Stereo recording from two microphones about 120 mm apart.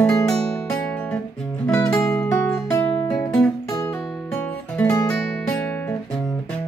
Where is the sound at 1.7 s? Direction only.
25° left (ahead or behind).